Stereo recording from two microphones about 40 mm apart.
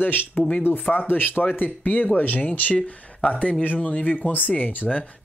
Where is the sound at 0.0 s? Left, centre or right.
Left.